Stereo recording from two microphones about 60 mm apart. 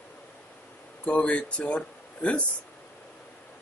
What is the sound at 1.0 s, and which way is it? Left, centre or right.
Speech, left.